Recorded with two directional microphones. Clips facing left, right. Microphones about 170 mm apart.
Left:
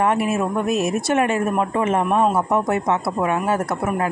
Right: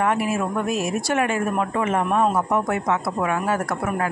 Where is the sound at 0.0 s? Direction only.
25° left (ahead or behind).